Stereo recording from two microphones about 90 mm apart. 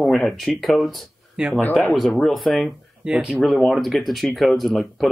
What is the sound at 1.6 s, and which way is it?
Speech, 20° left (ahead or behind).